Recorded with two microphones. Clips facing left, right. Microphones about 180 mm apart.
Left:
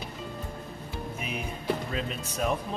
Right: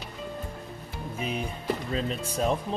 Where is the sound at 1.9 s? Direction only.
30° right (ahead or behind).